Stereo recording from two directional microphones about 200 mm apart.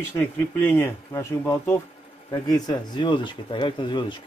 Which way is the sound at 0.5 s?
10° left (ahead or behind).